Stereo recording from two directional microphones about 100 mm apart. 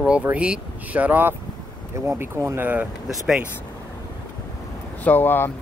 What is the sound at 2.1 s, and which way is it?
Speech, 30° right (ahead or behind).